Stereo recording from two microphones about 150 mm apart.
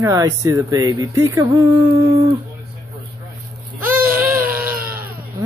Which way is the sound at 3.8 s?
10° right (ahead or behind).